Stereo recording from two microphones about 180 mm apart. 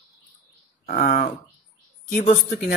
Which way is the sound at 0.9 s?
45° left (ahead or behind).